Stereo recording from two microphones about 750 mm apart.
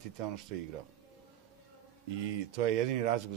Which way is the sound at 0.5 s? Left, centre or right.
Right.